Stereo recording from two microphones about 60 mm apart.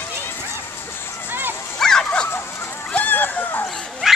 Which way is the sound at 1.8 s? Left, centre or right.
Centre.